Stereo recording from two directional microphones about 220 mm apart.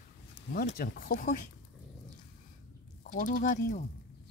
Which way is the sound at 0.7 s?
45° left (ahead or behind).